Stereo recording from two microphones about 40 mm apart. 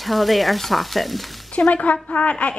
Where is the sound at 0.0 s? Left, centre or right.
Centre.